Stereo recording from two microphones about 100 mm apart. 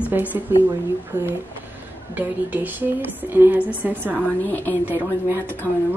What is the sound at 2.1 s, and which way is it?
A woman's voice, 15° right (ahead or behind).